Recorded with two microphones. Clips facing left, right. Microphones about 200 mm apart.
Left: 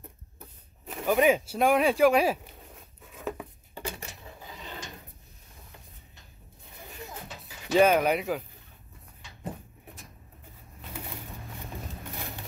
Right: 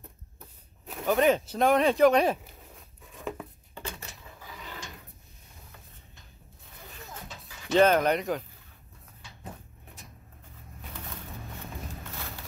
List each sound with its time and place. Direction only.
0.8 s a sound: 5° left (ahead or behind)
4.2 s drawer open or close: 20° left (ahead or behind)
7.4 s speech: 10° left (ahead or behind)